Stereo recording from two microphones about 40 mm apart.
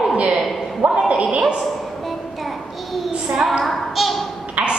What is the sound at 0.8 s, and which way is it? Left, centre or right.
Speech, right.